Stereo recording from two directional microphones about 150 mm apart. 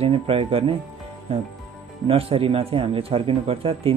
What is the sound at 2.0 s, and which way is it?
Speech, 40° right (ahead or behind).